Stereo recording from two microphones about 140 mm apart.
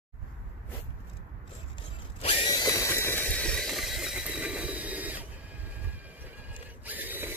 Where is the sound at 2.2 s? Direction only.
35° left (ahead or behind).